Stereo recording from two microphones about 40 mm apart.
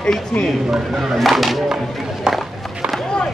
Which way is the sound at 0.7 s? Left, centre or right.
Centre.